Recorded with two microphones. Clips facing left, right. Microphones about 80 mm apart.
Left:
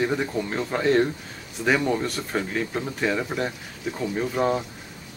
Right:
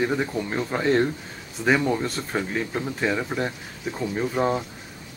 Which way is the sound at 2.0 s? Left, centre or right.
Right.